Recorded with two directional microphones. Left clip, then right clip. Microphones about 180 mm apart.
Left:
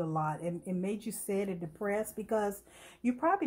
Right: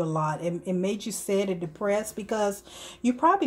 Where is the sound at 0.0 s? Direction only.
25° left (ahead or behind).